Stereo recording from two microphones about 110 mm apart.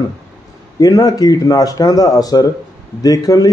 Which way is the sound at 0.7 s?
35° left (ahead or behind).